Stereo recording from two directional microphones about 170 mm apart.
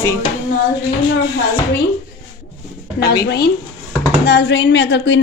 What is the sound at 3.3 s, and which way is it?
Speech, 70° left (ahead or behind).